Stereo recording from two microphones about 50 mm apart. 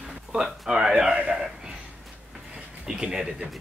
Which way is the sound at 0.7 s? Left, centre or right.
Centre.